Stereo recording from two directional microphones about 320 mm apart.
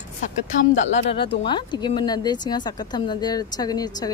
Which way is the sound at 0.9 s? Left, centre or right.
Centre.